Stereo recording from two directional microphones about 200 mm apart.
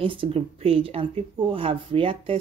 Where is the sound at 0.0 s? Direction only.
25° right (ahead or behind).